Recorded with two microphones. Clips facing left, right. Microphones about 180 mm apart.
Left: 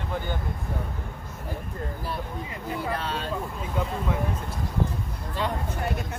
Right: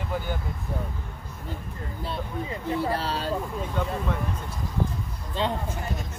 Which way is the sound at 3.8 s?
5° left (ahead or behind).